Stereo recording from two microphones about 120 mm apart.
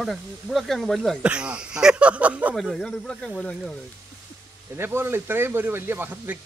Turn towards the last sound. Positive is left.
turn(degrees=-15)  # may be behind; listen again after turning